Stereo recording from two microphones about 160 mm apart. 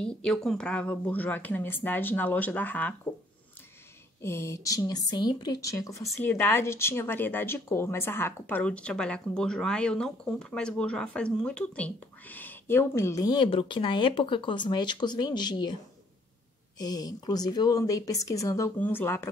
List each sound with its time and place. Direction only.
0.0 s a woman's voice: 5° left (ahead or behind)
4.2 s a woman's voice: 15° left (ahead or behind)
16.7 s a woman's voice: 25° left (ahead or behind)